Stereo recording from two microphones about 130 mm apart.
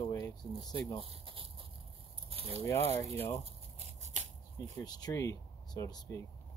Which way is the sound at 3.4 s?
60° right (ahead or behind).